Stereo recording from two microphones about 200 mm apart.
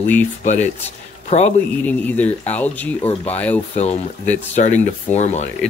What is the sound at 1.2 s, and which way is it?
Speech, 35° left (ahead or behind).